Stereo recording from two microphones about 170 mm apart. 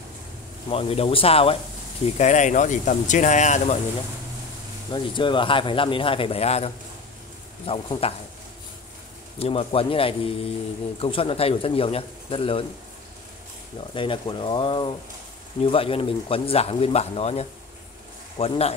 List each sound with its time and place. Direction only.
0.7 s speech: 35° left (ahead or behind)
2.1 s speech: 45° left (ahead or behind)
4.9 s speech: 30° left (ahead or behind)
9.4 s speech: 35° left (ahead or behind)
13.9 s speech: 30° left (ahead or behind)